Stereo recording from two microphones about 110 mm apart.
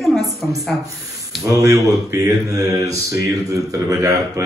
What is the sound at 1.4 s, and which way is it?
Mantra, 30° right (ahead or behind).